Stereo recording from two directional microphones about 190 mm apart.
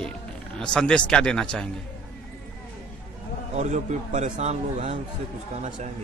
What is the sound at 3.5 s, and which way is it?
A man's voice, 35° right (ahead or behind).